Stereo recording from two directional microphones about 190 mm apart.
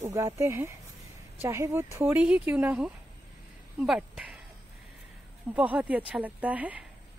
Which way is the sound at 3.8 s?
Centre (ahead or behind).